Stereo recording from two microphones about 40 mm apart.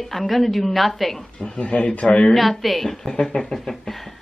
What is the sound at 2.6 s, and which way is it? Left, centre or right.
A woman's voice, centre.